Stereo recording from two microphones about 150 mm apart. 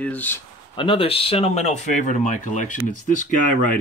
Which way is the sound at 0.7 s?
35° left (ahead or behind).